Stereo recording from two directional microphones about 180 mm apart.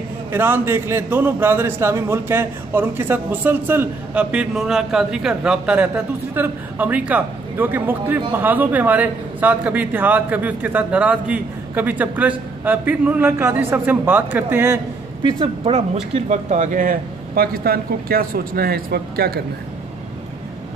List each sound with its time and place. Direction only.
0.3 s a man's voice: 10° right (ahead or behind)
15.2 s a man's voice: 25° right (ahead or behind); by 19.4 s 60° right (ahead or behind)